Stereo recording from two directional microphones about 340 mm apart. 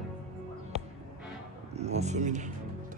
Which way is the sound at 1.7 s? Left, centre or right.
Centre.